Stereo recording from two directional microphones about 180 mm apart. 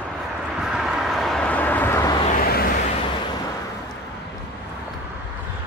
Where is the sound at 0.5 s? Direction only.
Centre (ahead or behind); by 2.1 s 15° left (ahead or behind).